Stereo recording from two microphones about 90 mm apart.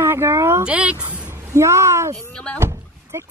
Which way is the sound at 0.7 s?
15° right (ahead or behind).